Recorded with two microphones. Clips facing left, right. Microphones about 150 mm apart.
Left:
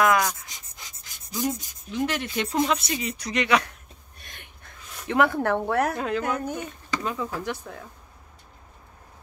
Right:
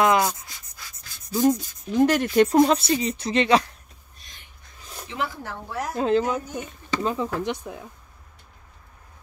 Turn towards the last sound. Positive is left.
turn(degrees=-15)  # may be behind; listen again after turning